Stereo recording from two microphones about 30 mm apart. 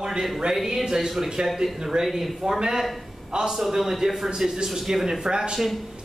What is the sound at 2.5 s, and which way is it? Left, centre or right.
Speech, centre.